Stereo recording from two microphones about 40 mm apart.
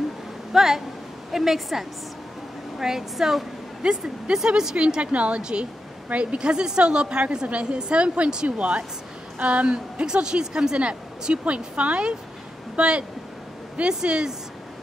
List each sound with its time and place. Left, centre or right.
0.5 s a woman's voice: centre
4.7 s a woman's voice: right
5.4 s a woman's voice: right